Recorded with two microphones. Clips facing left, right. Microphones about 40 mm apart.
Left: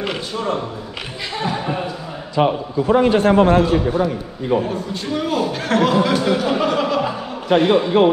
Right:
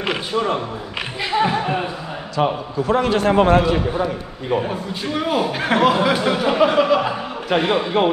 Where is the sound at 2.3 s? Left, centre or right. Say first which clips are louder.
Left 3 dB; centre.